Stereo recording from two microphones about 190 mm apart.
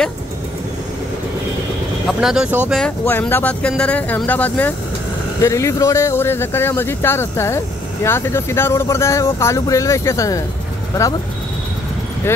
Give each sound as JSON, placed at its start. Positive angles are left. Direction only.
{"t": 2.0, "sound": "speech", "side_deg": 0}
{"t": 2.7, "sound": "speech", "side_deg": 5}